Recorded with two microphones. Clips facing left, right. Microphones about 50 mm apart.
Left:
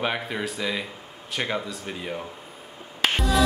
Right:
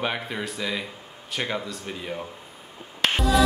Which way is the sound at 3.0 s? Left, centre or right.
Centre.